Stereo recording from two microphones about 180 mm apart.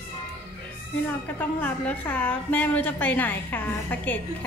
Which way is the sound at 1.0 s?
10° left (ahead or behind).